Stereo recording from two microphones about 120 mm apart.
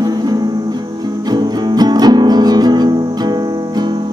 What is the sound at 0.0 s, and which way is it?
Music, 35° right (ahead or behind).